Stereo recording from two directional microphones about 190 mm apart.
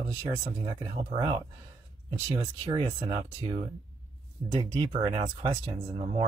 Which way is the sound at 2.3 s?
20° right (ahead or behind).